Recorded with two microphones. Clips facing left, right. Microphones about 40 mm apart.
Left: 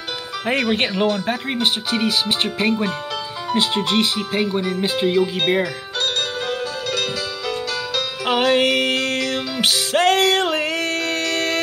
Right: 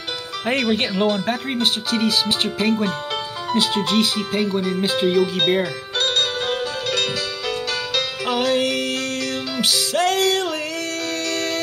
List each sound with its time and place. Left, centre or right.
0.5 s speech: centre
3.5 s speech: left
5.9 s music: right
8.3 s music: left